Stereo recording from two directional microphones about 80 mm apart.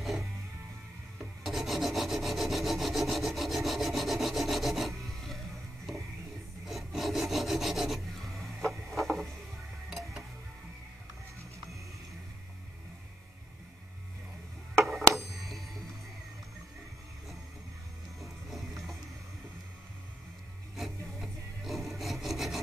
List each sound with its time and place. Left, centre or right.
0.0 s music: centre
1.4 s filing: centre
6.6 s filing: centre
8.5 s a sound: centre
9.8 s music: centre
14.9 s a sound: centre
18.2 s music: centre
20.7 s rub: centre